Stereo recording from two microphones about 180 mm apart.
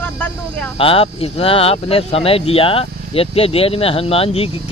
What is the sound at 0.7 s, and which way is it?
Speech, 30° left (ahead or behind).